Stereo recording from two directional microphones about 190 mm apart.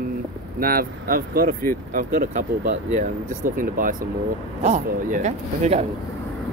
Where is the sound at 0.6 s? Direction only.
50° right (ahead or behind).